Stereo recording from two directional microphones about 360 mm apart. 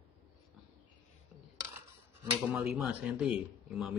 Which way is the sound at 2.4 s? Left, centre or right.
Centre.